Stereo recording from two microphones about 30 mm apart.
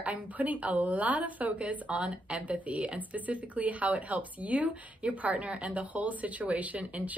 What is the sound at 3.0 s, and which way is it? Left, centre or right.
A woman's voice, right.